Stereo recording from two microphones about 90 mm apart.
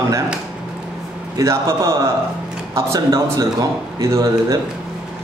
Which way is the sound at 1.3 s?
35° right (ahead or behind).